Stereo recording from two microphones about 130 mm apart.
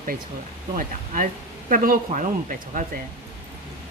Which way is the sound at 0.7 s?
90° right.